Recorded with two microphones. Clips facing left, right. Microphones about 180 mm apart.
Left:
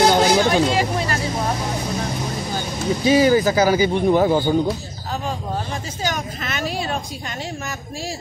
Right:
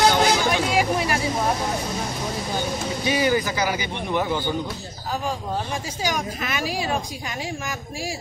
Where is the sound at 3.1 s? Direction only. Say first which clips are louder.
Left 7 dB; 30° left (ahead or behind).